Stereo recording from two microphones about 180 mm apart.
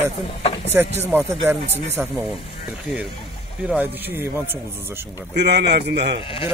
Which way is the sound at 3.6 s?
10° right (ahead or behind).